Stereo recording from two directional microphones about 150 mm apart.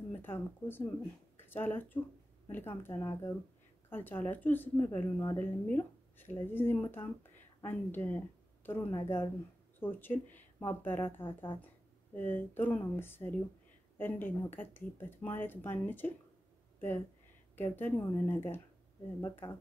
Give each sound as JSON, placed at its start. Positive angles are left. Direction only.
{"t": 0.1, "sound": "speech", "side_deg": 15}
{"t": 11.2, "sound": "a woman's voice", "side_deg": 35}
{"t": 11.6, "sound": "speech", "side_deg": 10}
{"t": 17.6, "sound": "speech", "side_deg": 15}